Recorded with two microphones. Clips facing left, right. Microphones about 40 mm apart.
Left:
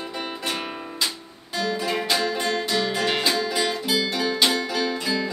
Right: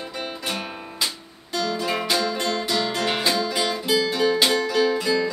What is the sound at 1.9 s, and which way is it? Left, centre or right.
Music, centre.